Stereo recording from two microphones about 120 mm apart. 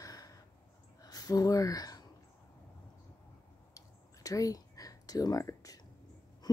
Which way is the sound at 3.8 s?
30° left (ahead or behind).